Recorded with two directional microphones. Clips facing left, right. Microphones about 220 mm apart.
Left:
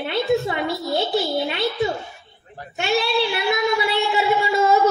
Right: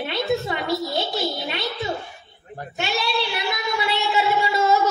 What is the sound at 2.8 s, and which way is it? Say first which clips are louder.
Speech: left 5 dB; 55° left (ahead or behind).